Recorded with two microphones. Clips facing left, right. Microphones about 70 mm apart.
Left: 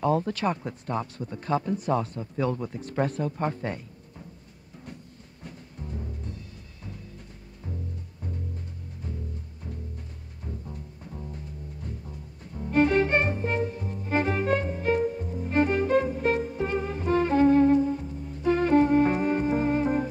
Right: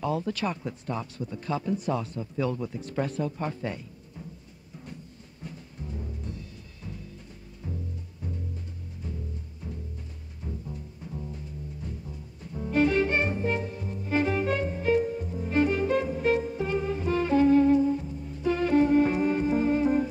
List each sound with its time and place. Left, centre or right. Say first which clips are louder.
0.0 s speech: left 4 dB; left
5.8 s music: even; left
8.2 s music: even; left
12.1 s music: right 1 dB; left